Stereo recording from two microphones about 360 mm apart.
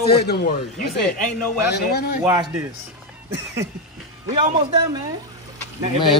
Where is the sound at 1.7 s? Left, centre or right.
Left.